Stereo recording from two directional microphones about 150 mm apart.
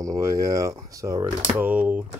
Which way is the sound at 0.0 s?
20° right (ahead or behind).